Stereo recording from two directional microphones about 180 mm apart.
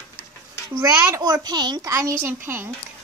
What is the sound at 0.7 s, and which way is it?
A child's voice, 20° right (ahead or behind).